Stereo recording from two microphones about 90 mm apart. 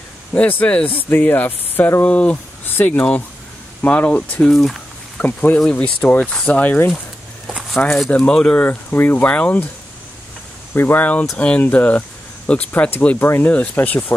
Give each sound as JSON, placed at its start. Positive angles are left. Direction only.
{"t": 0.3, "sound": "speech", "side_deg": 20}
{"t": 4.6, "sound": "speech", "side_deg": 0}
{"t": 5.2, "sound": "speech", "side_deg": 20}
{"t": 8.1, "sound": "speech", "side_deg": 10}
{"t": 8.6, "sound": "speech", "side_deg": 25}
{"t": 10.7, "sound": "speech", "side_deg": 25}